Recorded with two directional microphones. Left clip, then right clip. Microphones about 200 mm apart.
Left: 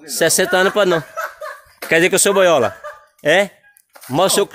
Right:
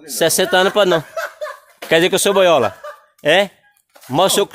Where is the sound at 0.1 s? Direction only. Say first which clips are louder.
Even; centre (ahead or behind).